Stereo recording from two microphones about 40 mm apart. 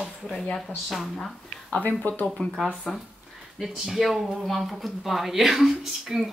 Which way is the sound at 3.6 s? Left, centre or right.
Centre.